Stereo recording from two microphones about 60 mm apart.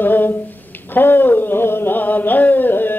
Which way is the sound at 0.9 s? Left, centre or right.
Left.